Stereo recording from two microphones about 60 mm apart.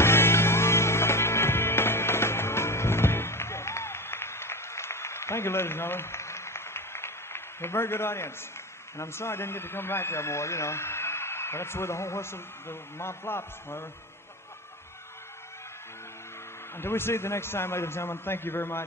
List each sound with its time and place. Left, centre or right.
0.0 s music: left
8.9 s speech: left
16.7 s speech: left